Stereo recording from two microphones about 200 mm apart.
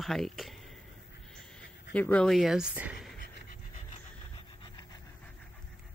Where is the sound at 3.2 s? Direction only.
45° left (ahead or behind).